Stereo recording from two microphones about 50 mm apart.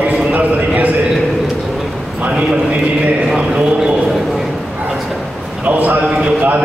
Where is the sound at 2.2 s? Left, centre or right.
Right.